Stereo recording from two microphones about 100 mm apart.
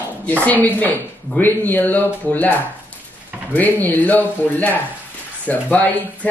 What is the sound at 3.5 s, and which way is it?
Speech, 20° left (ahead or behind).